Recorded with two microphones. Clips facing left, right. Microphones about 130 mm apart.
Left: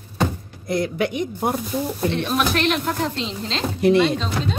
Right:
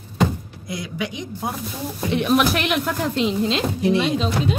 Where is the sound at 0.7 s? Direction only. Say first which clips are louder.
Left 7 dB; 55° left (ahead or behind).